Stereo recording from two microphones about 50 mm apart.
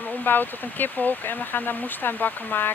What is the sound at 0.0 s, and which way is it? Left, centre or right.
Speech, left.